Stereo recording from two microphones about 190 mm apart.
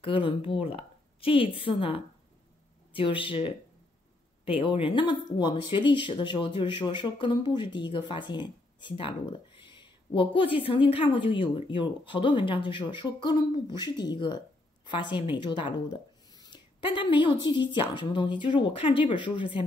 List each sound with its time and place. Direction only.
0.0 s speech: 25° left (ahead or behind)